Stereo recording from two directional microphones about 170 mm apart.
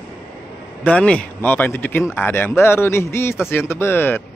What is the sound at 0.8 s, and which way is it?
Speech, 5° left (ahead or behind).